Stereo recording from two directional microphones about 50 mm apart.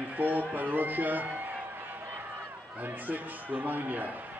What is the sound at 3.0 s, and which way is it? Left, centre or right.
A man's voice, right.